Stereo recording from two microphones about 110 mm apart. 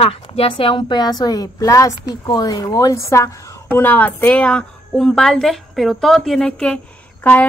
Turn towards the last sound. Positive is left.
turn(degrees=15)  # may be behind; listen again after turning